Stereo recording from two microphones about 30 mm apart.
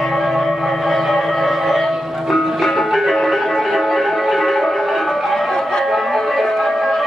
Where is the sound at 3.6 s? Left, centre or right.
Centre.